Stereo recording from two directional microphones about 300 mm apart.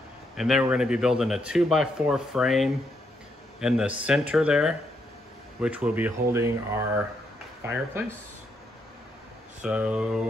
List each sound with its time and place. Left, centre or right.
0.4 s speech: centre
7.6 s speech: centre
9.6 s speech: centre